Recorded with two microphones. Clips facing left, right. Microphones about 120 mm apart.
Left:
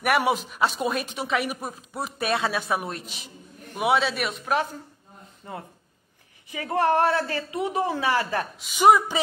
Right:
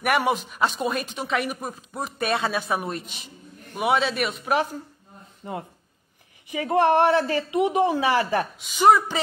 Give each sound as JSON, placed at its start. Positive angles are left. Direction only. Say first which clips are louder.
{"t": 0.2, "sound": "speech", "louder": "even", "side_deg": 0}
{"t": 5.4, "sound": "speech", "louder": "right 4 dB", "side_deg": -15}
{"t": 8.5, "sound": "a woman's voice", "louder": "left 1 dB", "side_deg": 10}